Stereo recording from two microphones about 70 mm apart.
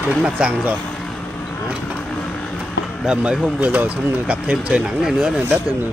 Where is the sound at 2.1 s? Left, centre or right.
Centre.